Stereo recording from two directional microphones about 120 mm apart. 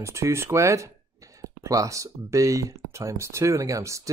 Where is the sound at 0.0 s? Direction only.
25° right (ahead or behind).